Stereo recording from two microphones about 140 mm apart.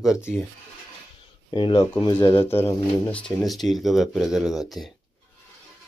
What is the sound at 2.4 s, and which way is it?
Speech, 20° left (ahead or behind).